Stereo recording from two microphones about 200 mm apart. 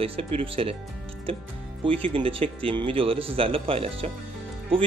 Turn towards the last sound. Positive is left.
turn(degrees=-25)  # may be behind; listen again after turning